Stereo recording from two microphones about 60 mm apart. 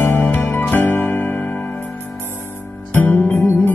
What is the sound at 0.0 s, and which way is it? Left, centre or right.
Music, left.